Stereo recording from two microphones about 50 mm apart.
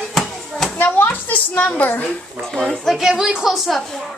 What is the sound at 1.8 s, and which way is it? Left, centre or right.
Speech, left.